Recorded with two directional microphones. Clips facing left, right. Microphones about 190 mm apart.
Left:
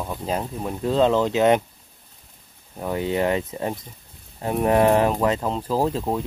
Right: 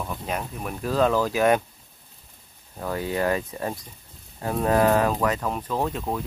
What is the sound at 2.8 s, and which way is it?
Speech, 20° left (ahead or behind).